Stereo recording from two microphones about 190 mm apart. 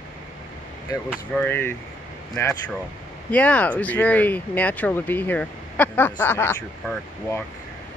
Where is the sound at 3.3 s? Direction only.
5° left (ahead or behind).